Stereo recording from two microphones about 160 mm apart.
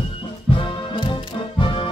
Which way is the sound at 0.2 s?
30° left (ahead or behind).